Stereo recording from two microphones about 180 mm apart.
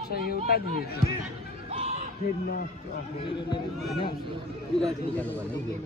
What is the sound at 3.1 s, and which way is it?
Speech, 25° left (ahead or behind).